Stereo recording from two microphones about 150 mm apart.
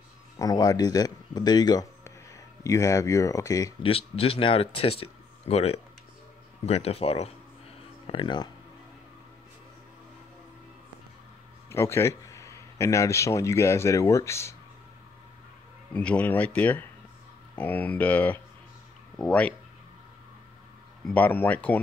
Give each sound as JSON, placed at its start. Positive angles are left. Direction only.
{"t": 0.4, "sound": "speech", "side_deg": 25}
{"t": 3.8, "sound": "speech", "side_deg": 40}
{"t": 8.1, "sound": "speech", "side_deg": 30}
{"t": 11.7, "sound": "a man's voice", "side_deg": 15}
{"t": 15.9, "sound": "speech", "side_deg": 10}
{"t": 21.0, "sound": "speech", "side_deg": 10}